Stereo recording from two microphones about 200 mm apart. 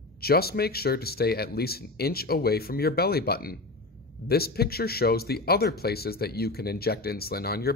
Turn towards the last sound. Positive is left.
turn(degrees=50)  # may be behind; listen again after turning